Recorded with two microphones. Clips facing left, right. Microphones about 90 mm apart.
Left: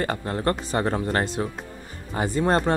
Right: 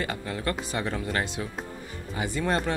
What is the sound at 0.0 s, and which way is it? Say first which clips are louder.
Speech: left 6 dB; 45° left (ahead or behind).